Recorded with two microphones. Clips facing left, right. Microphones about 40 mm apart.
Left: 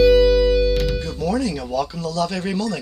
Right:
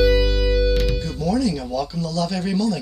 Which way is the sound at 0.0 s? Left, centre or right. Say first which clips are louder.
Left 5 dB; centre.